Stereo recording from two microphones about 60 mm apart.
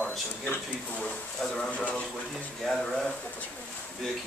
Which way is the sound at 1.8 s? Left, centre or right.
Centre.